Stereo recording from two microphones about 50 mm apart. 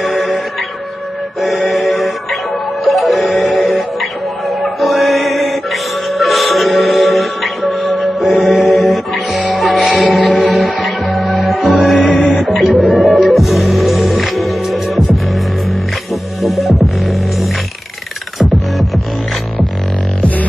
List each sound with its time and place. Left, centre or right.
0.0 s music: centre
1.7 s music: centre
20.2 s music: left